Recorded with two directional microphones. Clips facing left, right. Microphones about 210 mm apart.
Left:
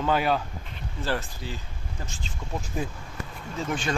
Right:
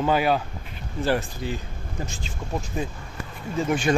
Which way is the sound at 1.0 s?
15° right (ahead or behind).